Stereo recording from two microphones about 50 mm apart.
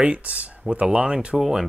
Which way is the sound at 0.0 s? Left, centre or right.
Right.